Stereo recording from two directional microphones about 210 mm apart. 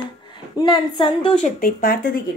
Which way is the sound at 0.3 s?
20° left (ahead or behind).